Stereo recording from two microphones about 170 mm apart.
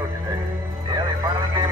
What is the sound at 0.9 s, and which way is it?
Music, 20° right (ahead or behind).